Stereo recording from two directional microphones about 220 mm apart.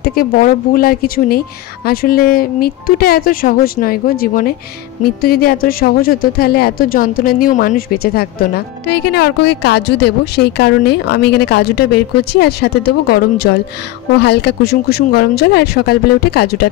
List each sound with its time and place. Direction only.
0.0 s speech: 40° left (ahead or behind)